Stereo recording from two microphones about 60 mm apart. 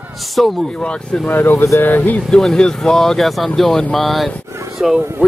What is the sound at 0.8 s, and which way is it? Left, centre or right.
Speech, centre.